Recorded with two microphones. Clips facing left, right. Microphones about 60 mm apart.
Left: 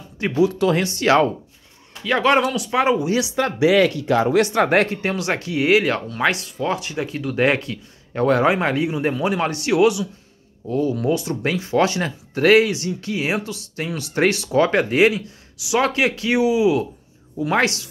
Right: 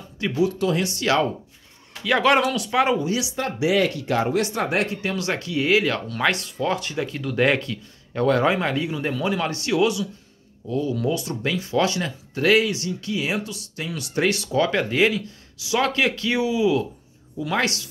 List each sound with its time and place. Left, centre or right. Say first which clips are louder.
0.4 s speech: left 4 dB; left
0.8 s speech: left 5 dB; left
2.0 s speech: left 1 dB; centre
3.2 s speech: left 6 dB; left
4.8 s speech: left 3 dB; left